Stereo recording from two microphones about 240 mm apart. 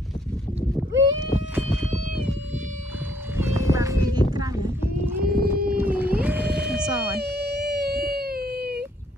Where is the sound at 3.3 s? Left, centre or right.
Centre.